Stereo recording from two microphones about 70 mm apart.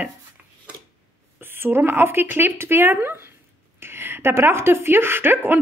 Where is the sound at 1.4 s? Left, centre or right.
Right.